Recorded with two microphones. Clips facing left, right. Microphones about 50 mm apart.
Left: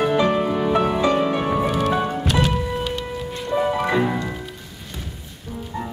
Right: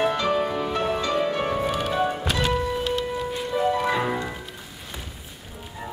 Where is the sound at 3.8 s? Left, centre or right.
Centre.